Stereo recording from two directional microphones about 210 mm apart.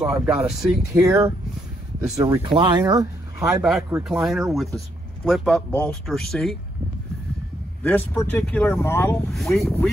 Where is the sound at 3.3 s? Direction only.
5° right (ahead or behind).